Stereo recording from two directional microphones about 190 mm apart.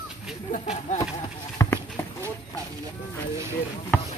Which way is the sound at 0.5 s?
35° left (ahead or behind).